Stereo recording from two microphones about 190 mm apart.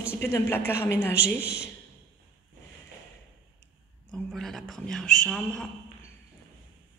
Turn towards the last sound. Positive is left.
turn(degrees=5)  # may be behind; listen again after turning